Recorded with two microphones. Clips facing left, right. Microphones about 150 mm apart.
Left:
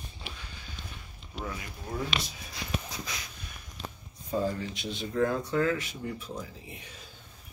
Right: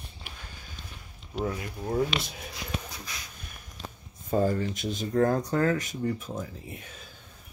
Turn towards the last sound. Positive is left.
turn(degrees=-45)  # may be behind; listen again after turning